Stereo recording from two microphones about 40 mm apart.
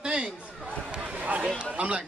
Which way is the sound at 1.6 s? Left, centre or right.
Right.